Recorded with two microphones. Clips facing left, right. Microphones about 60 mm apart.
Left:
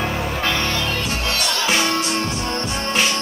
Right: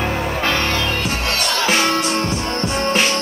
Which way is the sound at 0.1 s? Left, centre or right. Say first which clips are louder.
Right 2 dB; right.